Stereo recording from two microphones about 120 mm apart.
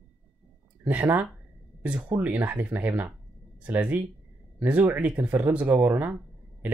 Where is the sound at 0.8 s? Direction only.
15° right (ahead or behind).